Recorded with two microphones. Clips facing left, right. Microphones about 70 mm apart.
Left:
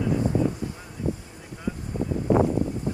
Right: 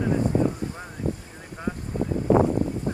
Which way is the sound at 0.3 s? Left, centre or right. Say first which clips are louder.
Right 2 dB; right.